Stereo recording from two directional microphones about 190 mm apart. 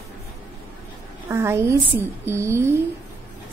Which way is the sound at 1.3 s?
15° right (ahead or behind).